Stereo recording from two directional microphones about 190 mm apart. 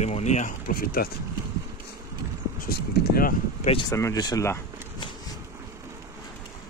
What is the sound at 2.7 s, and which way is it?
Speech, 50° left (ahead or behind).